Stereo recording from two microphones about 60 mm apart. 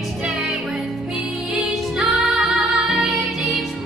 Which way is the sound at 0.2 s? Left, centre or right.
Centre.